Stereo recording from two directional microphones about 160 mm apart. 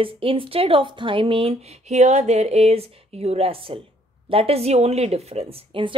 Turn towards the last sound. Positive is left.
turn(degrees=-35)  # may be behind; listen again after turning